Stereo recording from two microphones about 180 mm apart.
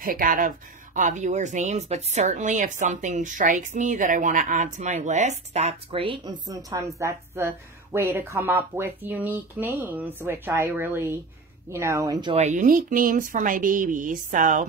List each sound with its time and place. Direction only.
0.0 s speech: 50° right (ahead or behind); by 12.4 s 20° right (ahead or behind)
12.4 s speech: 40° right (ahead or behind)